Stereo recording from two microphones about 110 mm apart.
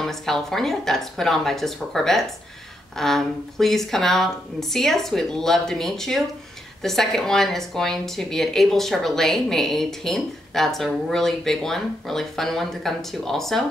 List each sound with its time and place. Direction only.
0.0 s a woman's voice: 5° left (ahead or behind)